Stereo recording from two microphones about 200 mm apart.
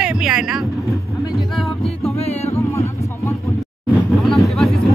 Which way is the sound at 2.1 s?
30° left (ahead or behind).